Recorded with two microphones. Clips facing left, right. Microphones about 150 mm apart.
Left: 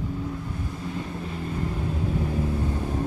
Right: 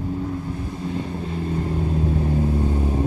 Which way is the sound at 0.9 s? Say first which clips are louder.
Right 6 dB; 25° right (ahead or behind).